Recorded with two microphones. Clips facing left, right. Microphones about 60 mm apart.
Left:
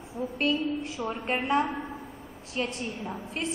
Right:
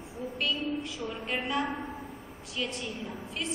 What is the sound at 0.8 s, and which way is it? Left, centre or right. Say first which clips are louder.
Speech: left 4 dB; left.